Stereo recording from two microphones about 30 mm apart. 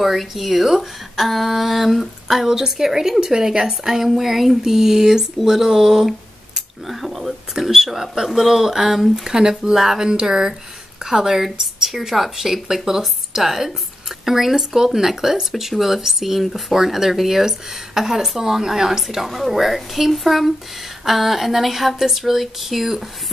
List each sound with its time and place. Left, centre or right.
0.4 s a woman's voice: centre; by 3.9 s right
3.9 s a woman's voice: centre
7.7 s a woman's voice: centre
9.3 s a woman's voice: right
9.9 s a woman's voice: right; by 16.7 s centre
16.7 s a woman's voice: centre
19.0 s speech: centre